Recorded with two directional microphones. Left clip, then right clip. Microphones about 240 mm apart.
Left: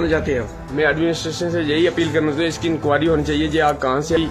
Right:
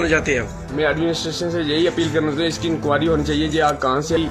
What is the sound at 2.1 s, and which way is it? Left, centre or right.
Speech, left.